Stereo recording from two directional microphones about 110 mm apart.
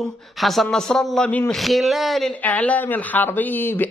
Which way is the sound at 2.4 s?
15° left (ahead or behind).